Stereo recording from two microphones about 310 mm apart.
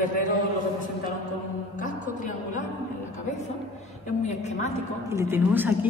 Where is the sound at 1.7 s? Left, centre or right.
Left.